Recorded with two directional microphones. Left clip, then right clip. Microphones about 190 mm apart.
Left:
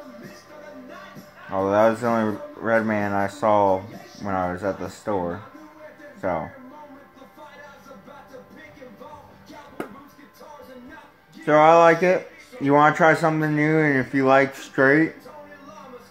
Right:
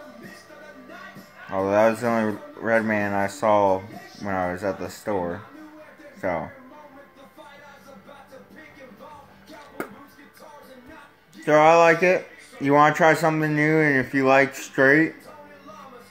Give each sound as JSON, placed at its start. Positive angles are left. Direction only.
{"t": 1.5, "sound": "speech", "side_deg": -10}
{"t": 11.4, "sound": "speech", "side_deg": -10}